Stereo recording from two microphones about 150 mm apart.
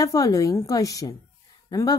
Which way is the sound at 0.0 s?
25° left (ahead or behind).